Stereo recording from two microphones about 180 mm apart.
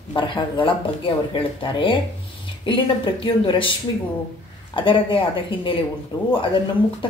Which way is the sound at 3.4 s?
30° left (ahead or behind).